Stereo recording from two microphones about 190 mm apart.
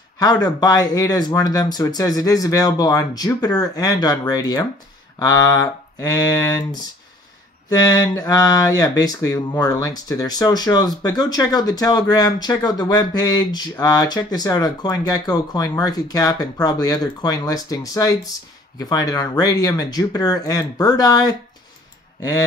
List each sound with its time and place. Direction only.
0.2 s speech: 20° left (ahead or behind)
7.8 s speech: 20° left (ahead or behind)